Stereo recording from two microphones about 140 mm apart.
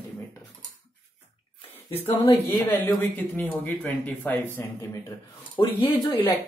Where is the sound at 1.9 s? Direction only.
15° left (ahead or behind).